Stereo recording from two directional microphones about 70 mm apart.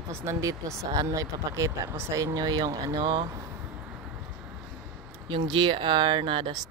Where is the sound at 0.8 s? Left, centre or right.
Right.